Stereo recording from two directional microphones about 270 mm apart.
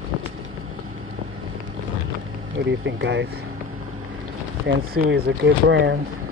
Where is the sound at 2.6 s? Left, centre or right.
Right.